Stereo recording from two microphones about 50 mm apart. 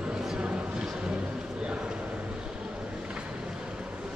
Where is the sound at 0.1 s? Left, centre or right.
Centre.